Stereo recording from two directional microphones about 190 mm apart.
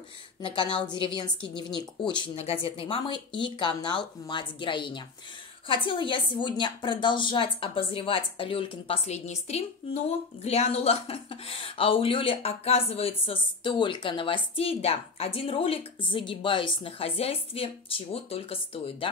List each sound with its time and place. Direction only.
0.4 s a woman's voice: 25° left (ahead or behind)